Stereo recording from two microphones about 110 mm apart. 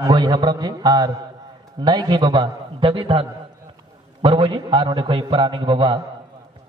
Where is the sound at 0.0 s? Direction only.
40° right (ahead or behind).